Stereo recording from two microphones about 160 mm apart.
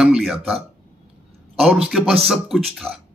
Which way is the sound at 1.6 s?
5° right (ahead or behind).